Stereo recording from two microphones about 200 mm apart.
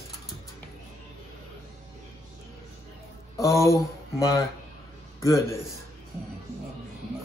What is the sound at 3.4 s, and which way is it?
Speech, 15° left (ahead or behind).